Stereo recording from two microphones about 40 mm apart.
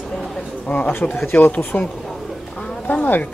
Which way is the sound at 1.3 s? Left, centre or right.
Left.